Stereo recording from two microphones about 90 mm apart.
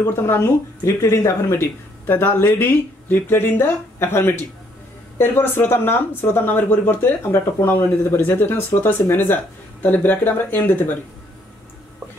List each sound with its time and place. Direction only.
0.1 s speech: 30° left (ahead or behind)